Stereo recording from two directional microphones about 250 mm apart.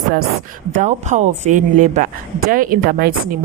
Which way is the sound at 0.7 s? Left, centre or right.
Right.